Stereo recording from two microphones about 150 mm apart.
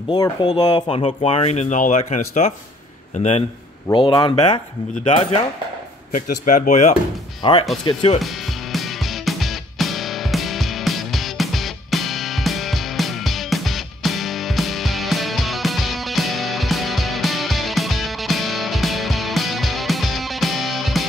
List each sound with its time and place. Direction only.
0.1 s a man's voice: 30° left (ahead or behind)
3.9 s speech: 30° left (ahead or behind)
6.1 s speech: 60° left (ahead or behind)
7.4 s speech: 35° left (ahead or behind)
8.7 s music: centre (ahead or behind)